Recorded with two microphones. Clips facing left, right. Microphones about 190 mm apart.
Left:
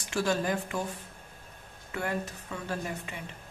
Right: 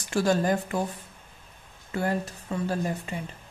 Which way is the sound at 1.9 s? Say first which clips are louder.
Right 5 dB; 35° right (ahead or behind).